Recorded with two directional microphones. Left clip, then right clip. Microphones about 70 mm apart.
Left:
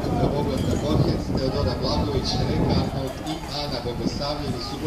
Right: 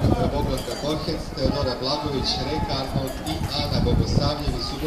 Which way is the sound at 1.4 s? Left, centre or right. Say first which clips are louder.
Right 3 dB; right.